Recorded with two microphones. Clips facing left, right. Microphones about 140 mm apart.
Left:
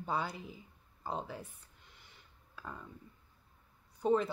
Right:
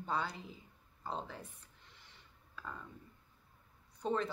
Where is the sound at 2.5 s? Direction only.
10° left (ahead or behind).